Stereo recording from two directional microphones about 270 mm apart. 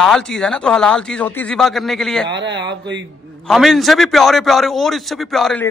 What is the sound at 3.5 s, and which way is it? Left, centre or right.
A man's voice, centre.